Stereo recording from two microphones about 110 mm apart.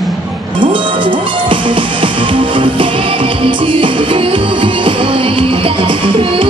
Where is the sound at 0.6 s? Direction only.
50° right (ahead or behind).